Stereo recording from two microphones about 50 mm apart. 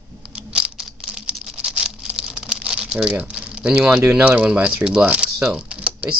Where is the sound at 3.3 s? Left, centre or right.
Right.